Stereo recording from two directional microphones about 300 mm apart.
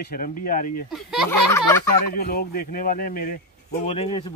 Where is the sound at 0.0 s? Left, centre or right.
Left.